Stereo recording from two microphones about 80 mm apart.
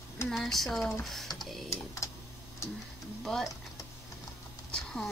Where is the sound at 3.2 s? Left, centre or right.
Centre.